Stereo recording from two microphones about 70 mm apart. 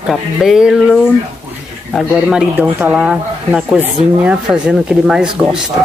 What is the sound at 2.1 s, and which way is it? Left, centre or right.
Speech, centre.